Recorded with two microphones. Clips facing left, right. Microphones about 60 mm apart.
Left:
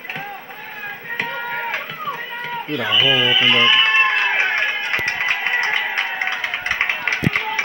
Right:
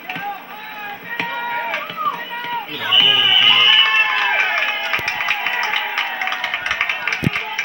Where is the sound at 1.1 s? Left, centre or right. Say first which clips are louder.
Right 2 dB; right.